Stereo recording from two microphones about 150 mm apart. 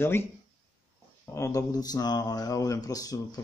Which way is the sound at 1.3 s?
20° left (ahead or behind).